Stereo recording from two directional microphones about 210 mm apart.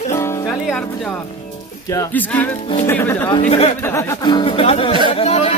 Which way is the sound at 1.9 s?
10° left (ahead or behind).